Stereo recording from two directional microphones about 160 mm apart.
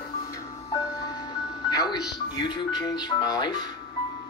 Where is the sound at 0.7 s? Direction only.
20° left (ahead or behind).